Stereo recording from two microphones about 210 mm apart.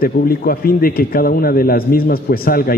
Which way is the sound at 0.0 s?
45° left (ahead or behind).